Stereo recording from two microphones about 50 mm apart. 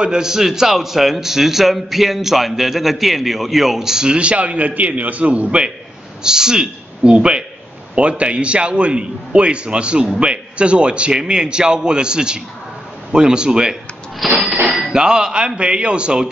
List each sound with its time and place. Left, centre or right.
0.0 s a man's voice: centre
14.4 s a man's voice: centre